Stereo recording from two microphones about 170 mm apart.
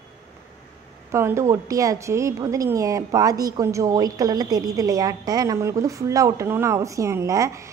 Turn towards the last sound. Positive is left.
turn(degrees=-20)  # may be behind; listen again after turning